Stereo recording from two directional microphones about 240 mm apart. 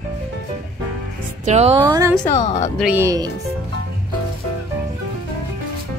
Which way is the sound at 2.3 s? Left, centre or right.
Left.